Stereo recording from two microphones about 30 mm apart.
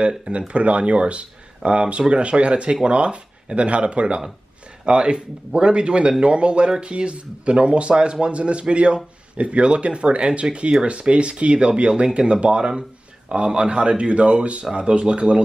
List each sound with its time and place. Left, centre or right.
0.5 s speech: right